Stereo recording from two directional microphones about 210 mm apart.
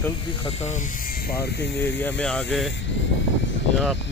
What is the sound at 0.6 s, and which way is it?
Speech, 35° left (ahead or behind).